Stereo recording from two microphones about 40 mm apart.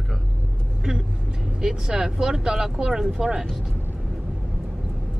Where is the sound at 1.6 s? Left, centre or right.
Centre.